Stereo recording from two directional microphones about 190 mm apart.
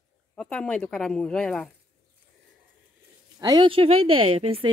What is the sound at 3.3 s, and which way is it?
A woman's voice, 20° right (ahead or behind).